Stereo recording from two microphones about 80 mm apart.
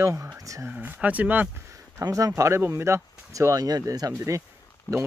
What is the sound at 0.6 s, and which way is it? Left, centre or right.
Speech, right.